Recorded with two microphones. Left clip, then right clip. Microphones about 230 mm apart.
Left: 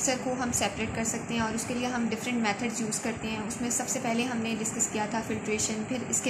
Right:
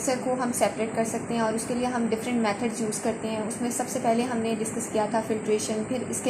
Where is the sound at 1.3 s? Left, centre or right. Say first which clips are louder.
Right 5 dB; left.